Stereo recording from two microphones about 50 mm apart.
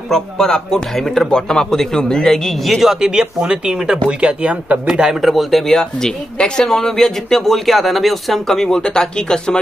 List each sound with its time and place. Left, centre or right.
0.1 s a man's voice: centre
2.8 s speech: centre
5.2 s speech: centre
5.7 s a man's voice: centre